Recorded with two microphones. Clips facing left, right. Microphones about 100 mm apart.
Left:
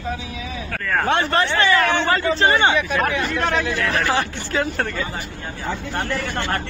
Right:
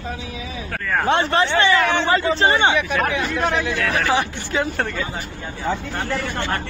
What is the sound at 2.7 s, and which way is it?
Speech, 5° right (ahead or behind).